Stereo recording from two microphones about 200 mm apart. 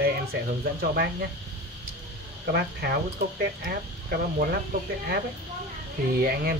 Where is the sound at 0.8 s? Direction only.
50° right (ahead or behind).